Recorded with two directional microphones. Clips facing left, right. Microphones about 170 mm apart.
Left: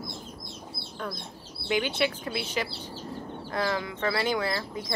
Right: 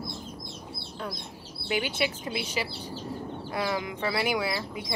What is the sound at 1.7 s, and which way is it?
Speech, 10° right (ahead or behind).